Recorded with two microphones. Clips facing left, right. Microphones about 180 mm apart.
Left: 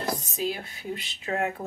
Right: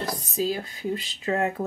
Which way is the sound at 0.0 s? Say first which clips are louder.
Left 1 dB; 15° right (ahead or behind).